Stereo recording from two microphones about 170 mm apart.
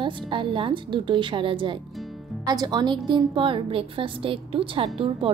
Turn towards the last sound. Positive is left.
turn(degrees=-35)  # may be behind; listen again after turning